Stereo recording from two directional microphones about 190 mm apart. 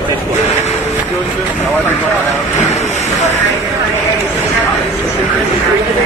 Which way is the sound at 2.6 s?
35° left (ahead or behind).